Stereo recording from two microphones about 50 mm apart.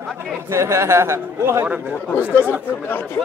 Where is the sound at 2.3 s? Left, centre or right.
Left.